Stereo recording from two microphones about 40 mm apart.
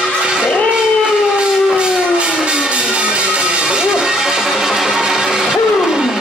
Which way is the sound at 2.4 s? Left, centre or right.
Right.